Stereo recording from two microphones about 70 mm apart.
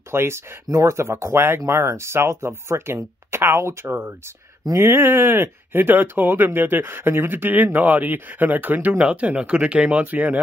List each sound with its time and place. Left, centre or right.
0.1 s speech: right